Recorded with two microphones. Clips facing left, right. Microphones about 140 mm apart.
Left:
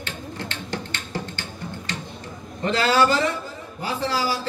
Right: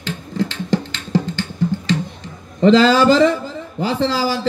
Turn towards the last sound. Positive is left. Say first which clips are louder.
# right 6 dB
turn(degrees=-90)